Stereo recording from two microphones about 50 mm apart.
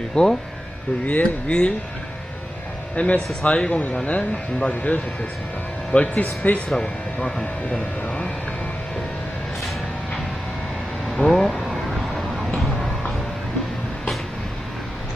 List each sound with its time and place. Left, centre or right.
0.2 s speech: centre
1.0 s speech: left
3.0 s speech: left
4.0 s speech: left
6.8 s speech: centre
8.0 s vehicle: left
11.1 s vehicle: centre